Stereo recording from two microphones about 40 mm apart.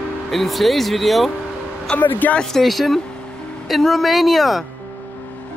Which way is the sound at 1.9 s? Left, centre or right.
Left.